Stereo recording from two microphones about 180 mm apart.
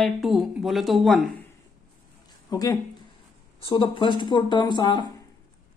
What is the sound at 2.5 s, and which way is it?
Speech, 20° left (ahead or behind).